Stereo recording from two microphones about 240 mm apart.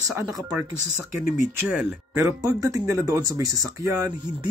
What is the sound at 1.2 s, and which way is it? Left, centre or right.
Speech, left.